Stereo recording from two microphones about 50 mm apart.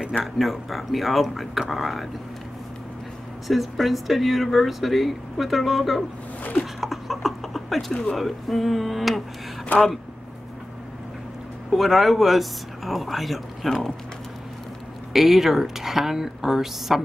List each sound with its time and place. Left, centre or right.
0.2 s speech: centre
3.4 s speech: centre
6.6 s a sound: centre
7.9 s speech: centre
8.2 s speech: centre
11.7 s speech: centre
15.1 s speech: centre